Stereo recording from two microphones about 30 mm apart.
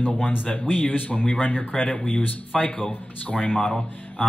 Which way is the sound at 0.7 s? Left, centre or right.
Left.